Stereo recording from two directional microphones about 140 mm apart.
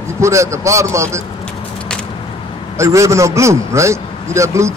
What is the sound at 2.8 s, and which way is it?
A man's voice, 20° right (ahead or behind).